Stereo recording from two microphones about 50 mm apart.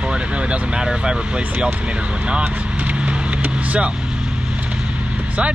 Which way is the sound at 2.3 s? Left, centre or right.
Right.